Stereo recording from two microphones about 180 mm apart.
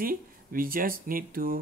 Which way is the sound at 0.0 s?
50° right (ahead or behind).